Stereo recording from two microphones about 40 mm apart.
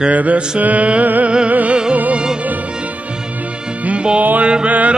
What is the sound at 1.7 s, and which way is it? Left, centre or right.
Music, right.